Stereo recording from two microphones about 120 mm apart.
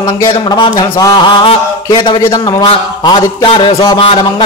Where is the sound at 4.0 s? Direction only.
50° left (ahead or behind).